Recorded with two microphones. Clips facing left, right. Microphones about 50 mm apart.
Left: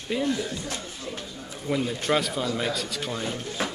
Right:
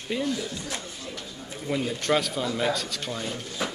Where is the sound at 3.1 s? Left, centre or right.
Centre.